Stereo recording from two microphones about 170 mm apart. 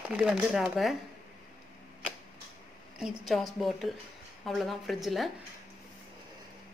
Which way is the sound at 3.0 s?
Centre (ahead or behind).